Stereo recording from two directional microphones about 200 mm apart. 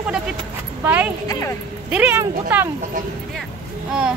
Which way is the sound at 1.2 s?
15° left (ahead or behind).